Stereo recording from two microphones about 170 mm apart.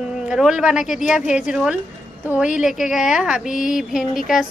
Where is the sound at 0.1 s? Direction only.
5° right (ahead or behind).